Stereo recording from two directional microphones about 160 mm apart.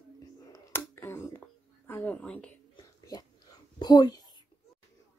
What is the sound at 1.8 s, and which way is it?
Speech, 10° left (ahead or behind).